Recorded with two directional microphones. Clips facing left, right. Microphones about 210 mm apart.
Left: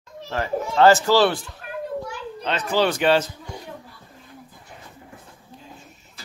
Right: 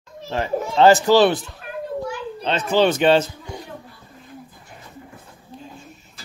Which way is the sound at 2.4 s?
25° right (ahead or behind).